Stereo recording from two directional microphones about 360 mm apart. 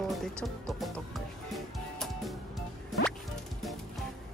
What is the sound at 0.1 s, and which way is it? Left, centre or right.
Music, centre.